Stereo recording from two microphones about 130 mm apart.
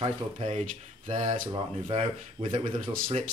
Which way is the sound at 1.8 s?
45° right (ahead or behind).